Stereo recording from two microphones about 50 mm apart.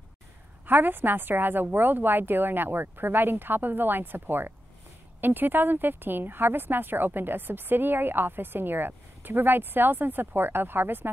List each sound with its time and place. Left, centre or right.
0.7 s speech: right